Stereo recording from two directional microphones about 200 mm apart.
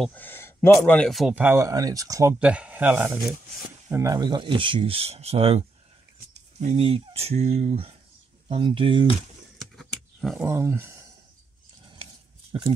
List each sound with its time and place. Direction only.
0.0 s speech: 10° left (ahead or behind); by 2.3 s 15° right (ahead or behind)
2.3 s speech: 5° right (ahead or behind); by 9.0 s 25° right (ahead or behind)
9.6 s a sound: centre (ahead or behind); by 11.1 s 15° right (ahead or behind)